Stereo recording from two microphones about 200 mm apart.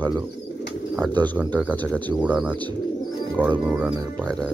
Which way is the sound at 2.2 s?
5° right (ahead or behind).